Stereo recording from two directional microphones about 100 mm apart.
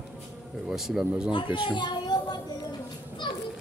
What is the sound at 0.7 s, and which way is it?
Speech, 5° right (ahead or behind).